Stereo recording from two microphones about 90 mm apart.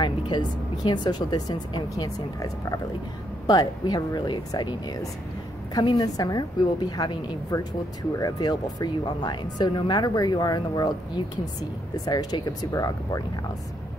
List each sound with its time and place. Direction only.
0.0 s speech: 50° left (ahead or behind)